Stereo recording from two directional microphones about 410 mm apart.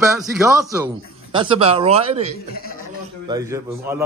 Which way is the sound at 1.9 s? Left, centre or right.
Right.